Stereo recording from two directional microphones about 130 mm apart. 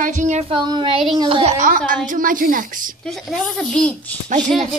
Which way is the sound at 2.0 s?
90° right.